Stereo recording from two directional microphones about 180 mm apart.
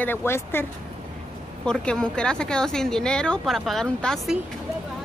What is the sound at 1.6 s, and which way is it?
A woman's voice, 5° left (ahead or behind).